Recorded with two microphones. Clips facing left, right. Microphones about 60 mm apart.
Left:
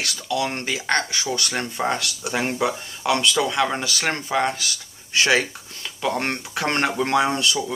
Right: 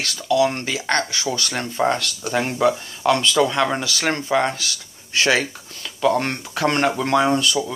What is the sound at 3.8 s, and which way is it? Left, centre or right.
Speech, centre.